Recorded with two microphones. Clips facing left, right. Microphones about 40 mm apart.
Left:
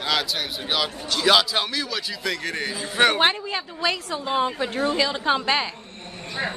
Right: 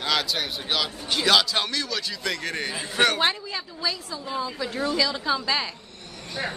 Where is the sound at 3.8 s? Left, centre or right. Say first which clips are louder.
Left 6 dB; left.